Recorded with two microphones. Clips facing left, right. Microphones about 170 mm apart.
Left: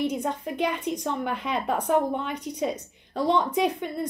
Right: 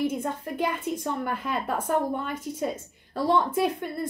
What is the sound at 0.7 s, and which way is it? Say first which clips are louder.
Speech: left 1 dB; 5° right (ahead or behind).